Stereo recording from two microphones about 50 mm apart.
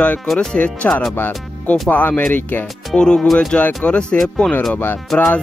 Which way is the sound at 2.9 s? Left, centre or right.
Centre.